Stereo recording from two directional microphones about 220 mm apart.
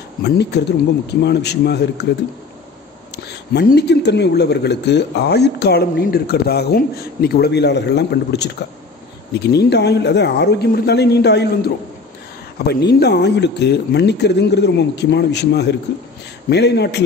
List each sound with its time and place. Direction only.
0.2 s speech: 50° left (ahead or behind)
3.5 s speech: 45° left (ahead or behind)